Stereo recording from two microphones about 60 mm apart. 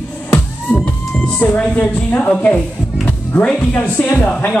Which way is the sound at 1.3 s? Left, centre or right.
Left.